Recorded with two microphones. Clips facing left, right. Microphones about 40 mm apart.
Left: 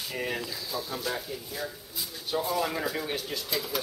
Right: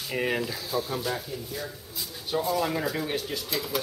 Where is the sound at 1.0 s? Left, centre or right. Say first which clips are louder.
Right 2 dB; centre.